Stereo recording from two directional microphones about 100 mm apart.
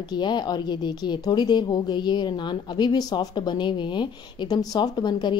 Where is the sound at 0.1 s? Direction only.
45° left (ahead or behind).